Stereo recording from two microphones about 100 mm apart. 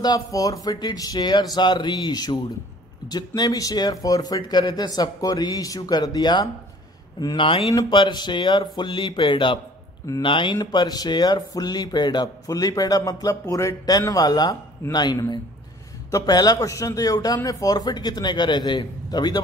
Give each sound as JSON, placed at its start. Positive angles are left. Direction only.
{"t": 0.0, "sound": "speech", "side_deg": 40}
{"t": 7.3, "sound": "speech", "side_deg": 60}
{"t": 7.9, "sound": "a man's voice", "side_deg": 45}